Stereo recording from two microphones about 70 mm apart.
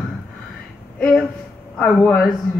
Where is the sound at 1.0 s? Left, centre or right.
Centre.